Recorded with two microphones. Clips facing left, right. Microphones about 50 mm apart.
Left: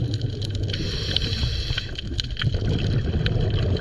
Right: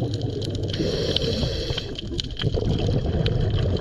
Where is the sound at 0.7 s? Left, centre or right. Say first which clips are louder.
Right 7 dB; centre.